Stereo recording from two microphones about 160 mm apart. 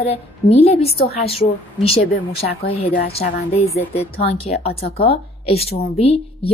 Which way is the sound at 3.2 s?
60° left (ahead or behind).